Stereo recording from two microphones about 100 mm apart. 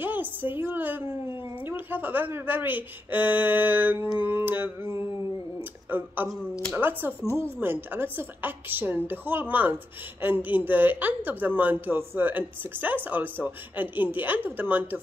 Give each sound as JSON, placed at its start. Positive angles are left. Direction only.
{"t": 0.0, "sound": "a sound", "side_deg": -20}
{"t": 1.7, "sound": "a woman's voice", "side_deg": -20}
{"t": 5.9, "sound": "a woman's voice", "side_deg": -20}